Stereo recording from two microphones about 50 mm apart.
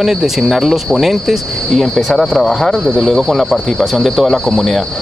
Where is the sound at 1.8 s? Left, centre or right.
Centre.